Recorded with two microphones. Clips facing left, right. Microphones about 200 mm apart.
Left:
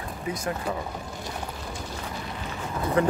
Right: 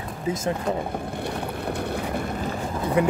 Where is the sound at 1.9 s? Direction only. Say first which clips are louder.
Right 8 dB; 60° right (ahead or behind).